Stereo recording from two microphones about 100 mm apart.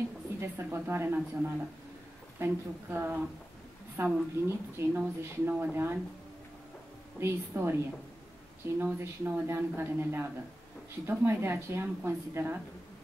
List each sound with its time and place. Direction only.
0.4 s speech: 25° right (ahead or behind)
7.2 s speech: 25° right (ahead or behind)
8.7 s speech: 25° right (ahead or behind)